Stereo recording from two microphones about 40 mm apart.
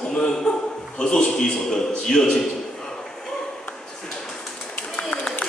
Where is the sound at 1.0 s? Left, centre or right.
Centre.